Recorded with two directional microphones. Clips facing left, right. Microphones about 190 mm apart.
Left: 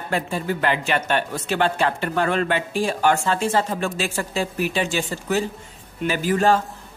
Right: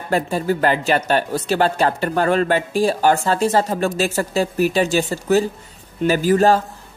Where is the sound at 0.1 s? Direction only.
40° right (ahead or behind).